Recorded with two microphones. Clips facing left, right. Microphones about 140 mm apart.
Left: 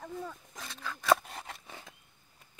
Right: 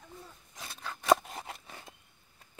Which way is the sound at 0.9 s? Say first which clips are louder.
Right 1 dB; 20° right (ahead or behind).